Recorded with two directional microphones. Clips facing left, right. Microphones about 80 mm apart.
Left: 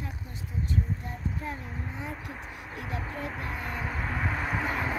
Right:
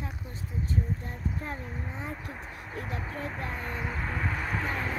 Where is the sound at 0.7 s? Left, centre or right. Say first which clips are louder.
Even; centre.